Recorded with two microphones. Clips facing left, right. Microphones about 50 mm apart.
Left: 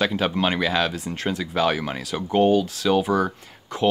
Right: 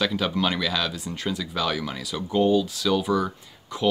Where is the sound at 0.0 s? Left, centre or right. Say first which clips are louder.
Left 2 dB; left.